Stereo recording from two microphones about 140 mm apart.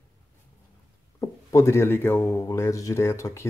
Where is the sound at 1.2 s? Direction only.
20° left (ahead or behind).